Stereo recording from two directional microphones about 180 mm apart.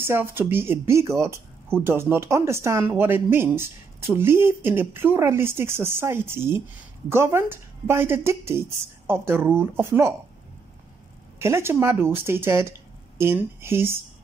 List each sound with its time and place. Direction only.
0.0 s speech: 15° right (ahead or behind)
11.3 s speech: 15° right (ahead or behind)